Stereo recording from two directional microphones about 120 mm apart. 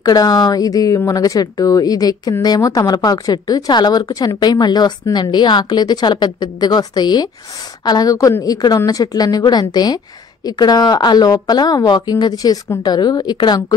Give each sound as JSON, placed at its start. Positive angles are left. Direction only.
{"t": 0.0, "sound": "a woman's voice", "side_deg": 30}